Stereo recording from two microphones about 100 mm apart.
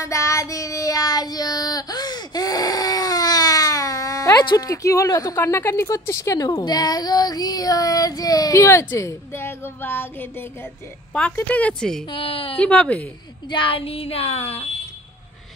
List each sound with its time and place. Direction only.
0.0 s child singing: 30° left (ahead or behind)
4.6 s a woman's voice: 35° left (ahead or behind); by 12.0 s 10° left (ahead or behind)
12.1 s speech: 65° left (ahead or behind)
12.5 s speech: 10° left (ahead or behind)
13.5 s speech: 60° left (ahead or behind); by 14.6 s 80° left